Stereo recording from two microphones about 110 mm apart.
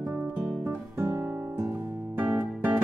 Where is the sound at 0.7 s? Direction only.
25° right (ahead or behind).